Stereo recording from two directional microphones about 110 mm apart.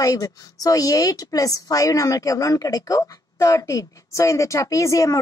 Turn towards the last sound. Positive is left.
turn(degrees=30)  # may be behind; listen again after turning